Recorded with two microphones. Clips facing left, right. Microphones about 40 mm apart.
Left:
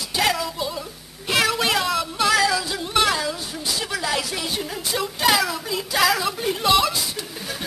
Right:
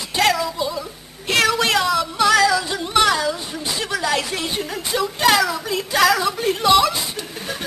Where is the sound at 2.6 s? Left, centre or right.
Centre.